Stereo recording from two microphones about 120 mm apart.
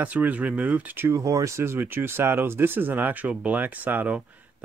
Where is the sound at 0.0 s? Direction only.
15° right (ahead or behind).